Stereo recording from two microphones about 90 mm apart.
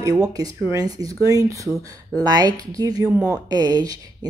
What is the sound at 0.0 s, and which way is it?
Speech, 40° right (ahead or behind).